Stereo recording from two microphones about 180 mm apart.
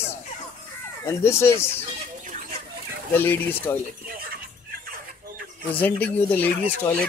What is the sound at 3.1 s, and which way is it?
Speech, 10° left (ahead or behind).